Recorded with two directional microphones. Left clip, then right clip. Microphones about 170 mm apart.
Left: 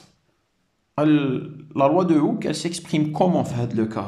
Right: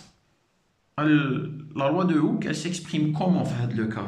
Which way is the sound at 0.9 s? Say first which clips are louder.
Left 3 dB; 30° left (ahead or behind).